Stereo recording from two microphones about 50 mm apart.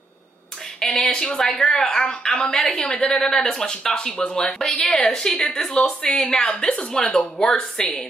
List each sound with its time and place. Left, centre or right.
0.7 s a sound: centre
1.4 s speech: centre; by 2.5 s left
2.5 s speech: centre
2.8 s a woman's voice: left
3.1 s speech: centre
5.8 s a woman's voice: left
6.1 s speech: centre